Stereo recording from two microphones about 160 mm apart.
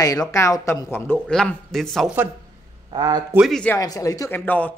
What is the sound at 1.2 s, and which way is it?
Speech, 5° left (ahead or behind).